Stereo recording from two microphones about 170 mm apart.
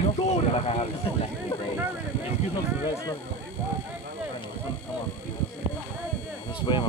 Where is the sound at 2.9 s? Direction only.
15° left (ahead or behind).